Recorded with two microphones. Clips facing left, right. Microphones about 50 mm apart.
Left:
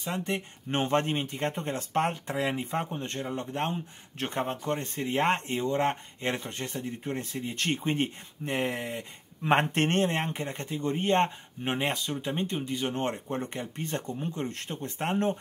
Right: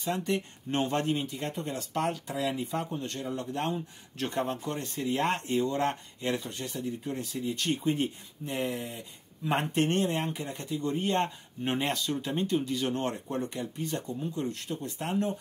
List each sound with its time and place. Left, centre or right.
0.2 s speech: left
11.6 s speech: left